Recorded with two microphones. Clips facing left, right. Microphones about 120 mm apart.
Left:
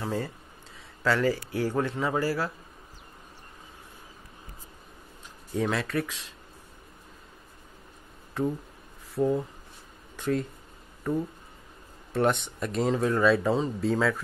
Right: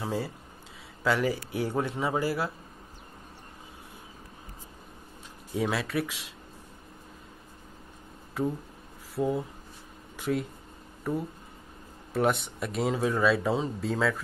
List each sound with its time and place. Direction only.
0.0 s a man's voice: 15° right (ahead or behind)
5.6 s a man's voice: 10° right (ahead or behind)
9.1 s speech: 10° right (ahead or behind)
10.1 s a sound: 10° right (ahead or behind)
11.1 s a man's voice: 10° right (ahead or behind)